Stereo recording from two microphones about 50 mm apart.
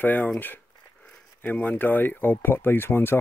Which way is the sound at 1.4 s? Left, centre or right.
Left.